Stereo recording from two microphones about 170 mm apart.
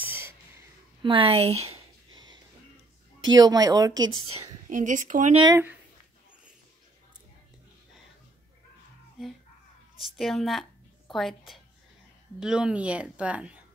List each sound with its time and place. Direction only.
0.0 s a sound: 10° right (ahead or behind)
1.0 s speech: 30° right (ahead or behind)
3.3 s speech: 20° right (ahead or behind)
4.6 s speech: 50° right (ahead or behind)
5.5 s a woman's voice: 10° right (ahead or behind)
9.9 s a woman's voice: centre (ahead or behind)